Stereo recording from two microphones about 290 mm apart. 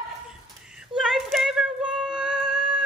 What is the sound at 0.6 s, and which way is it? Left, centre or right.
Female singing, centre.